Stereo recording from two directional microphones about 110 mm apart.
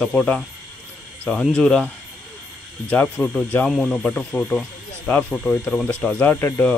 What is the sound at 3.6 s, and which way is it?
Speech, centre (ahead or behind).